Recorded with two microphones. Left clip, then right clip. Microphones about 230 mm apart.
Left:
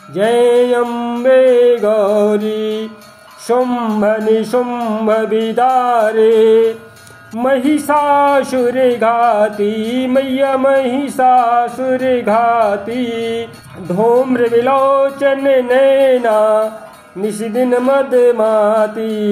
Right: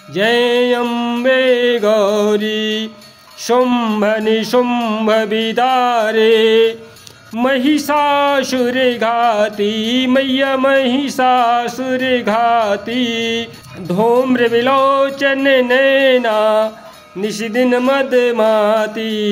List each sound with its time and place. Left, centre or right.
0.1 s music: right
3.4 s speech: right